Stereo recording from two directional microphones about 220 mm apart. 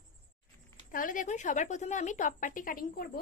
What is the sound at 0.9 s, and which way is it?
Speech, 40° left (ahead or behind).